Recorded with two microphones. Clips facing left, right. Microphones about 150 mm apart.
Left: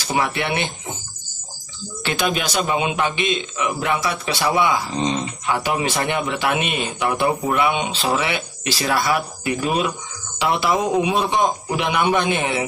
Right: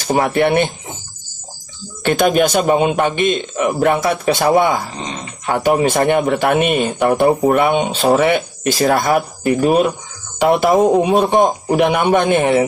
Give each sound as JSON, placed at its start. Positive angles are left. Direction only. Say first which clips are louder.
{"t": 0.0, "sound": "a man's voice", "louder": "right 8 dB", "side_deg": -45}
{"t": 2.0, "sound": "a man's voice", "louder": "right 9 dB", "side_deg": -50}